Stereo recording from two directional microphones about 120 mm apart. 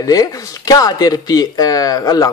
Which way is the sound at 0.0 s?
30° left (ahead or behind).